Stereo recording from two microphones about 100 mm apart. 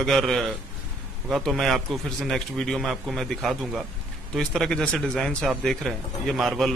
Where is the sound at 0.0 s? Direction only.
5° left (ahead or behind).